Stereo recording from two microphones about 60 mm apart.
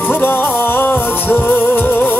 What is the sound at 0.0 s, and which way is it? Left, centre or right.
Music, left.